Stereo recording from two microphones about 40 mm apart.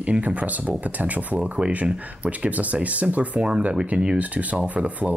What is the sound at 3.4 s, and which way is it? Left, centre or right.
Speech, right.